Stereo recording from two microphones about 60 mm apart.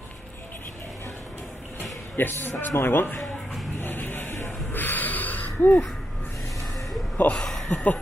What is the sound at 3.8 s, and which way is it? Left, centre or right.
Music, left.